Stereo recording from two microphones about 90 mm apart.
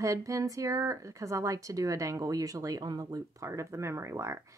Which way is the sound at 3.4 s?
30° right (ahead or behind).